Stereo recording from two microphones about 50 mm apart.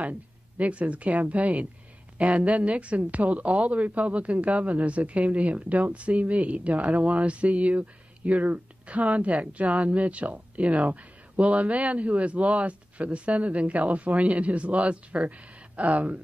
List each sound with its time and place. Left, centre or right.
0.0 s a woman's voice: right